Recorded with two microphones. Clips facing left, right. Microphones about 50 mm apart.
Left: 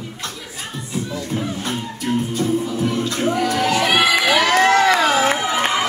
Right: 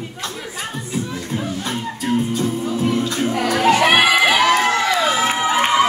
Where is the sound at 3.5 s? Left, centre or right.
Right.